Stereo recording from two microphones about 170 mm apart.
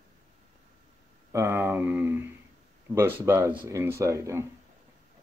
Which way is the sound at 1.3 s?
15° right (ahead or behind).